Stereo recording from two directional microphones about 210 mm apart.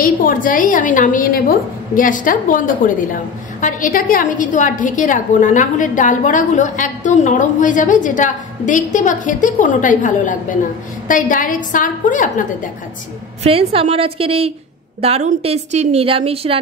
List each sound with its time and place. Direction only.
0.0 s a woman's voice: 40° left (ahead or behind)
13.4 s a woman's voice: 30° right (ahead or behind)